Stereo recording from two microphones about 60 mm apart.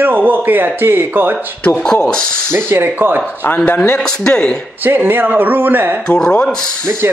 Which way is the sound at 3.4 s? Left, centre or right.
Left.